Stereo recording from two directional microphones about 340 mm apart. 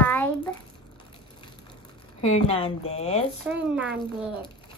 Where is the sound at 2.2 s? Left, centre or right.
Centre.